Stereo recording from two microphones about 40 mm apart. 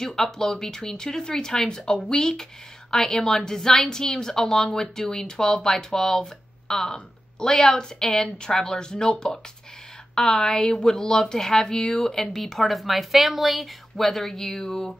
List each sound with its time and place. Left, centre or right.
0.0 s a woman's voice: centre
10.1 s a woman's voice: centre
11.7 s speech: left
12.0 s speech: centre